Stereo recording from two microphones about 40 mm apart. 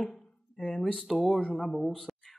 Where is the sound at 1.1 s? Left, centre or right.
Centre.